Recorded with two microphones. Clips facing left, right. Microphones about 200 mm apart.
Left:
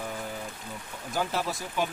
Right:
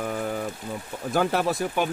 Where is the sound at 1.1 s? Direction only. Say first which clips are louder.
Right 7 dB; 60° right (ahead or behind).